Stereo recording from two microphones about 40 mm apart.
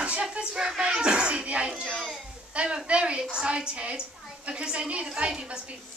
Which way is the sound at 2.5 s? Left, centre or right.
Right.